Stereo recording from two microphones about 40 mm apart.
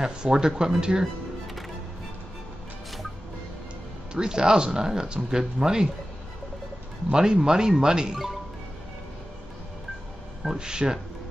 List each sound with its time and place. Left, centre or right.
0.0 s speech: centre
4.1 s speech: centre
7.1 s speech: centre
10.6 s speech: centre